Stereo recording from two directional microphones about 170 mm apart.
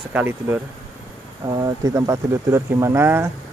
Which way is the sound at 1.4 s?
20° right (ahead or behind).